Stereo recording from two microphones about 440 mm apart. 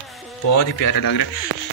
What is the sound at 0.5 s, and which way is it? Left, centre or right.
Speech, left.